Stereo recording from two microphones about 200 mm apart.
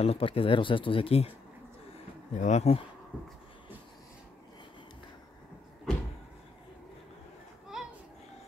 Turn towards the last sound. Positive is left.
turn(degrees=-5)  # may be behind; listen again after turning